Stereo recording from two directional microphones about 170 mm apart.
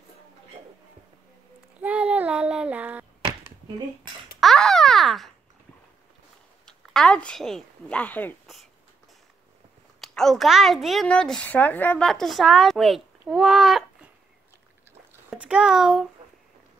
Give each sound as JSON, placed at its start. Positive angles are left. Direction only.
{"t": 1.8, "sound": "child singing", "side_deg": -10}
{"t": 4.4, "sound": "babbling", "side_deg": 0}
{"t": 6.6, "sound": "a woman's voice", "side_deg": 5}
{"t": 9.9, "sound": "a woman's voice", "side_deg": 0}
{"t": 15.2, "sound": "a woman's voice", "side_deg": -5}